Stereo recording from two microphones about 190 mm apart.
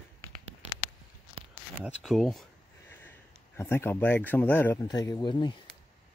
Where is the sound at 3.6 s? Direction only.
10° left (ahead or behind).